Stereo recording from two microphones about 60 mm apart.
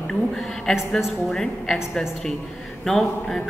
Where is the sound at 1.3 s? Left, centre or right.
Centre.